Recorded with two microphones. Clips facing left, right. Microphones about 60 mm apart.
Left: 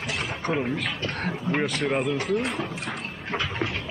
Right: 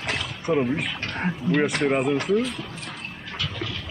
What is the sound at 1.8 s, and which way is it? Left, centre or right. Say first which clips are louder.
Speech: right 3 dB; centre.